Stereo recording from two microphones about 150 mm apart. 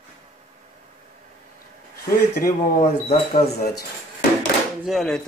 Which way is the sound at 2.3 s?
80° left.